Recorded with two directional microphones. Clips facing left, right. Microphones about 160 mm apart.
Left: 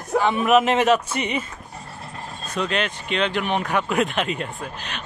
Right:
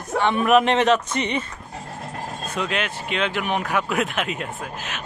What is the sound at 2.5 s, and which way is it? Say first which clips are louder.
Speech: left 2 dB; 10° right (ahead or behind).